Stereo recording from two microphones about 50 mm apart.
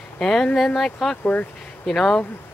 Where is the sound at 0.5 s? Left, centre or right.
Centre.